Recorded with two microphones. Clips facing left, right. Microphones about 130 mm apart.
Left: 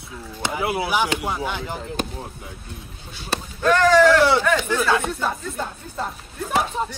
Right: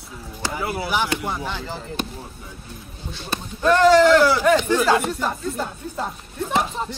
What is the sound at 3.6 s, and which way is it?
Speech, 15° right (ahead or behind).